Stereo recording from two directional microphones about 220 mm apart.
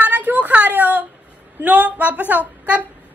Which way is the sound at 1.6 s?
5° right (ahead or behind).